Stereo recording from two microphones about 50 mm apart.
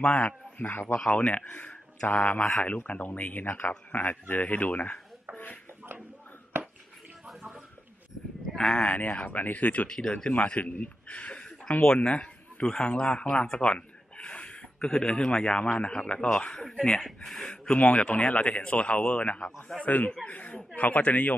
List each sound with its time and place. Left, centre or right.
0.0 s a man's voice: left
1.1 s speech: left
5.3 s a sound: left
8.5 s speech: centre
9.9 s speech: centre
10.3 s speech: left
12.0 s speech: centre
17.0 s speech: centre
17.5 s speech: left